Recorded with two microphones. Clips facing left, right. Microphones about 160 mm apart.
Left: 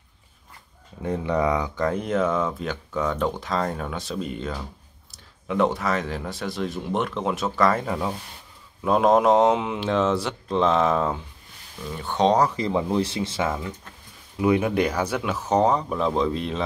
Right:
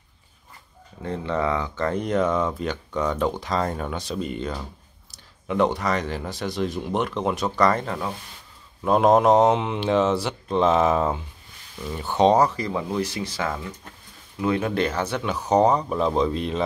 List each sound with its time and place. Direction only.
1.0 s speech: 15° left (ahead or behind); by 12.4 s 5° right (ahead or behind)
12.5 s speech: 25° left (ahead or behind); by 16.6 s centre (ahead or behind)